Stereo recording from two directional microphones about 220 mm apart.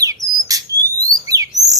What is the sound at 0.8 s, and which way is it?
Alarm, 15° right (ahead or behind).